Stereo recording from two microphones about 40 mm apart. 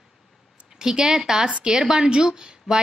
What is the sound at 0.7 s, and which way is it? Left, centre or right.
A woman's voice, centre.